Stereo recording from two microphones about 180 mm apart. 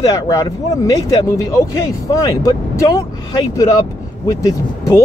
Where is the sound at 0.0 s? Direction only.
20° left (ahead or behind).